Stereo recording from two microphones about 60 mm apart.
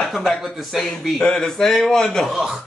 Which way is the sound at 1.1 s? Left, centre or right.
Centre.